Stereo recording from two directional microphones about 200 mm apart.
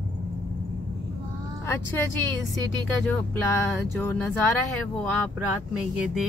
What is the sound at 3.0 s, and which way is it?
A woman's voice, 10° left (ahead or behind).